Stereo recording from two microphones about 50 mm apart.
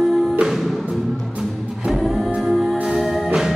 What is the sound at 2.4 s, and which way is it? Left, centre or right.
Music, centre.